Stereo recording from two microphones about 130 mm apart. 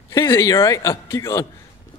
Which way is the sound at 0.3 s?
25° left (ahead or behind).